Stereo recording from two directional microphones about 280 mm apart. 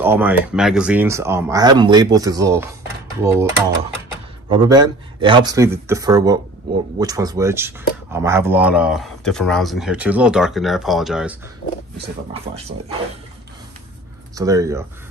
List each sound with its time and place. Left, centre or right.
0.0 s speech: centre
4.5 s speech: centre
12.5 s speech: right
14.3 s speech: centre